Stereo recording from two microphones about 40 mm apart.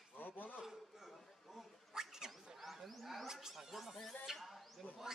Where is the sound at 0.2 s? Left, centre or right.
Left.